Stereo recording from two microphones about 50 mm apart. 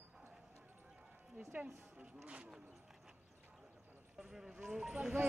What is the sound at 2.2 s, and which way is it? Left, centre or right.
Speech, right.